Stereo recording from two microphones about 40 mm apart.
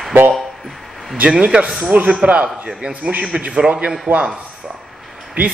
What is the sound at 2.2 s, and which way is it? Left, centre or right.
A man's voice, right.